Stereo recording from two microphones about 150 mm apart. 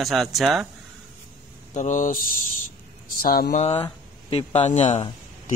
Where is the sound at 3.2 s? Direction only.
75° left (ahead or behind).